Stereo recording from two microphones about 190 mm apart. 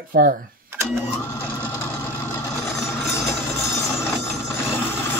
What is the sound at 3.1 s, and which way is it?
Vehicle, 15° left (ahead or behind).